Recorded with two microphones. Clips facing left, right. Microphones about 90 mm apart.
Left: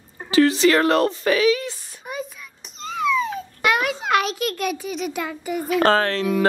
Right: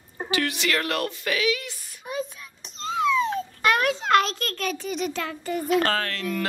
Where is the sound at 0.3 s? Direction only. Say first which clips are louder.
Left 10 dB; 30° left (ahead or behind).